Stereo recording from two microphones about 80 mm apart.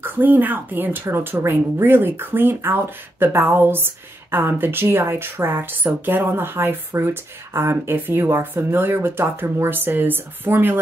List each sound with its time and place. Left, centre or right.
0.0 s speech: right